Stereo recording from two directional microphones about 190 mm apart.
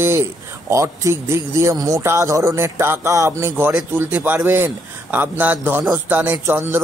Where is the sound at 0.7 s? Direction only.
15° right (ahead or behind).